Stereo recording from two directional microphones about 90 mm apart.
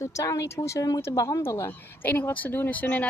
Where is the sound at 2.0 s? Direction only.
20° left (ahead or behind).